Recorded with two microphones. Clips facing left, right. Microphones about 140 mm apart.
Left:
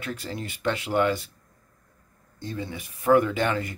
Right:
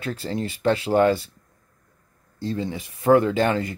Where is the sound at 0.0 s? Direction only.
30° right (ahead or behind).